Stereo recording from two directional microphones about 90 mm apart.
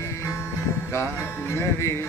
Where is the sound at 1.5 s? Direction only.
30° left (ahead or behind).